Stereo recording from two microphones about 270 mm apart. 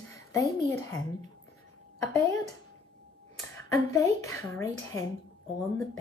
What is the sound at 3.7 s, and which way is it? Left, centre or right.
A woman's voice, centre.